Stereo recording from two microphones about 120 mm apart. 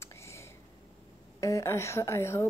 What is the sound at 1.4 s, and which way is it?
A woman's voice, 25° left (ahead or behind).